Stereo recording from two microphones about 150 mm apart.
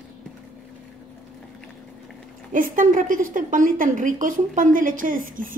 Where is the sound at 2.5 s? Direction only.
65° right (ahead or behind).